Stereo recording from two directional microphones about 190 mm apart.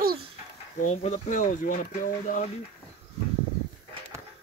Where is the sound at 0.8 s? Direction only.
40° left (ahead or behind).